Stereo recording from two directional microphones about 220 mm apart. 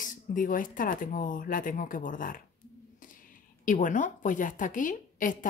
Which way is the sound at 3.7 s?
35° left (ahead or behind).